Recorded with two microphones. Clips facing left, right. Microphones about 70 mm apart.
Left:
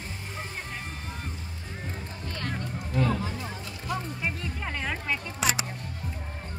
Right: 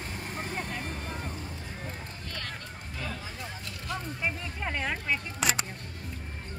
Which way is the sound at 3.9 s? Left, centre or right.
Centre.